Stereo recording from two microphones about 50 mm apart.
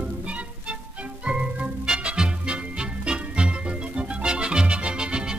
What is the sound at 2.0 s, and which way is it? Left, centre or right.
Music, centre.